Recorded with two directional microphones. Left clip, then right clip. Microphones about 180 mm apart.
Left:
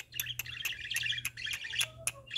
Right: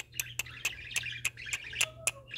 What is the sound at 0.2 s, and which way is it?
Bird, 25° right (ahead or behind).